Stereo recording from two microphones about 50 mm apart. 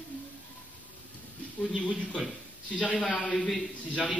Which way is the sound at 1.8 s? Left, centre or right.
Left.